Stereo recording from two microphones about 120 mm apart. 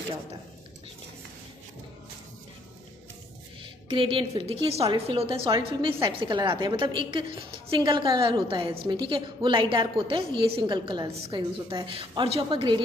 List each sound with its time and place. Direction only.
3.9 s a woman's voice: 45° right (ahead or behind)